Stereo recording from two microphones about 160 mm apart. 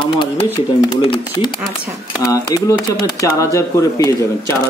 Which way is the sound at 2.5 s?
20° left (ahead or behind).